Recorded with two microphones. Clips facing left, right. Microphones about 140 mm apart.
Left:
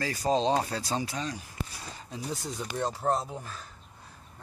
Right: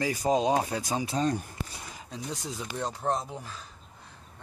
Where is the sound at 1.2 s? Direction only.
50° right (ahead or behind).